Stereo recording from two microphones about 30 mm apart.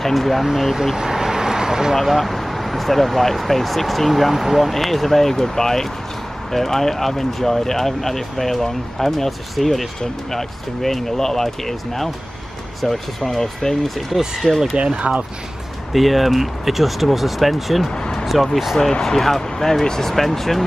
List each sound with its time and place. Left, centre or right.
0.0 s speech: centre
0.9 s vehicle: centre
2.0 s speech: centre
14.8 s speech: right
15.9 s speech: centre
17.9 s a sound: left
18.2 s speech: centre
18.8 s speech: centre